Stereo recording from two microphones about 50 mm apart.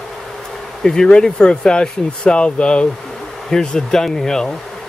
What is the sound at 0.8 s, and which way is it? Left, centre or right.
Speech, centre.